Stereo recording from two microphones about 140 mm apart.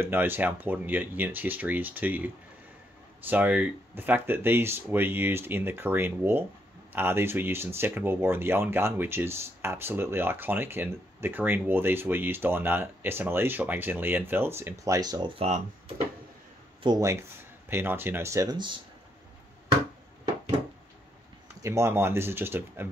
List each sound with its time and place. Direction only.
0.0 s speech: 15° right (ahead or behind)
15.3 s speech: 45° right (ahead or behind)
16.8 s speech: 35° right (ahead or behind)
17.6 s speech: 15° right (ahead or behind)
21.6 s speech: 20° right (ahead or behind)